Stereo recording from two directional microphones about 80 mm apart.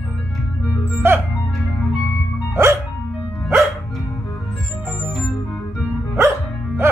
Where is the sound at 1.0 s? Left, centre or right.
Right.